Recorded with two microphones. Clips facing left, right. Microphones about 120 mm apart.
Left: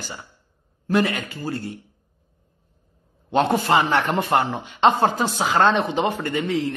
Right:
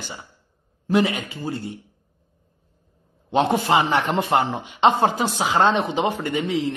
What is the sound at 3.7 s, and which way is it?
A woman's voice, 15° right (ahead or behind).